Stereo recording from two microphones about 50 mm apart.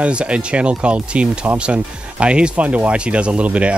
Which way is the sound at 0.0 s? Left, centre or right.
Right.